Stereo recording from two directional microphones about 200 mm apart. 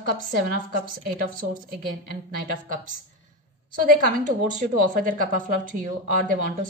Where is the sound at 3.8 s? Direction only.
45° right (ahead or behind).